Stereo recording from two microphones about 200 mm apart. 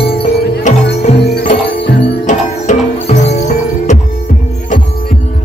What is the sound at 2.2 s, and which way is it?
Music, 35° left (ahead or behind).